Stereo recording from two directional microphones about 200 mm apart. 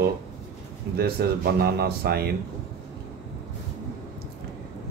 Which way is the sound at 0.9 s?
50° right (ahead or behind).